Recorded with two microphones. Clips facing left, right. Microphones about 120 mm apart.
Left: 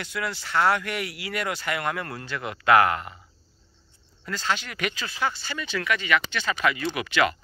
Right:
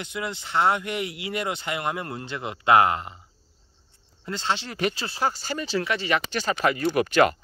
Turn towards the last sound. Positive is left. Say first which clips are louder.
# right 5 dB
turn(degrees=-45)  # may be behind; listen again after turning